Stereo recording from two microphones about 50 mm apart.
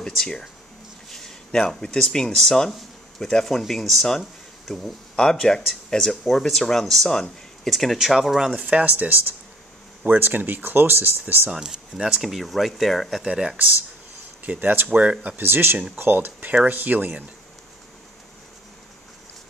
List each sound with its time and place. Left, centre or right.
0.0 s speech: centre
8.5 s speech: right
10.0 s speech: right
11.5 s speech: centre
13.3 s speech: centre
14.4 s speech: right
14.9 s speech: right
15.3 s speech: right